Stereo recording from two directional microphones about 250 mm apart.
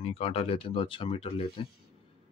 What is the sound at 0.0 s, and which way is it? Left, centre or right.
Speech, left.